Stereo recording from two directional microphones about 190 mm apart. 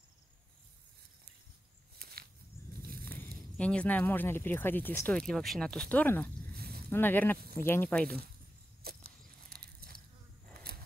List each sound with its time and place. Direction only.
2.0 s walk: 55° right (ahead or behind)
2.8 s biting: 50° right (ahead or behind)
3.1 s speech: 10° left (ahead or behind)
6.5 s a sound: 55° right (ahead or behind)
6.9 s speech: 10° left (ahead or behind)
8.8 s a sound: 55° right (ahead or behind)